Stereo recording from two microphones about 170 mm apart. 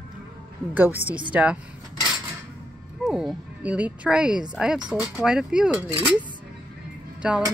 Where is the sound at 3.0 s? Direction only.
5° right (ahead or behind).